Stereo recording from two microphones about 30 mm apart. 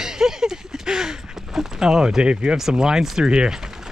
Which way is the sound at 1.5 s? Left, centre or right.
Right.